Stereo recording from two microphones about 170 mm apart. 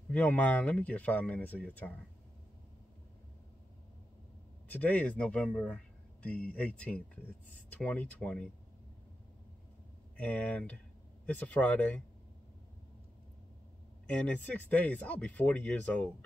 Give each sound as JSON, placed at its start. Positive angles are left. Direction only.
{"t": 0.1, "sound": "speech", "side_deg": 10}
{"t": 4.6, "sound": "speech", "side_deg": 10}
{"t": 10.1, "sound": "speech", "side_deg": 10}
{"t": 14.4, "sound": "speech", "side_deg": 10}